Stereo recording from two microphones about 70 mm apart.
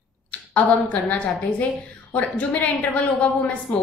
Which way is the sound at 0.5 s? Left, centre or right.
Centre.